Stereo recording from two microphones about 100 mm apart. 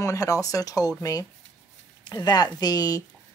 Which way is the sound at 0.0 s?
35° left (ahead or behind).